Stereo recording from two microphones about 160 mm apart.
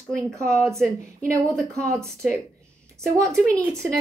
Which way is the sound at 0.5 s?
5° left (ahead or behind).